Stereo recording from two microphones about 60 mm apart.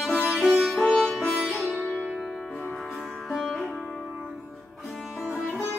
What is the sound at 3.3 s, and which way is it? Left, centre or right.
Sitar, centre.